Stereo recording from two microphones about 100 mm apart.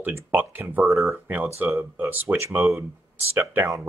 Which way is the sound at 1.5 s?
15° right (ahead or behind).